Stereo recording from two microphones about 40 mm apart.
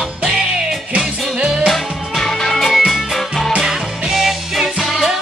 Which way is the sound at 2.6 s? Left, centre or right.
Centre.